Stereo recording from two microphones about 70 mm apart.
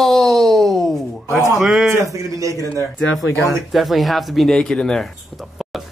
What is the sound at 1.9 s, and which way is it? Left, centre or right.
Speech, right.